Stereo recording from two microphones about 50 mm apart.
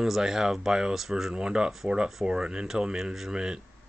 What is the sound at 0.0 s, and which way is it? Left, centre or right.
Speech, centre.